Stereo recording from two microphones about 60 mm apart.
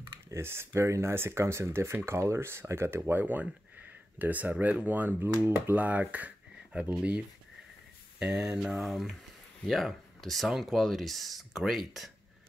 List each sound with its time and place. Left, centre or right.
0.3 s speech: right
3.0 s speech: right
8.3 s speech: centre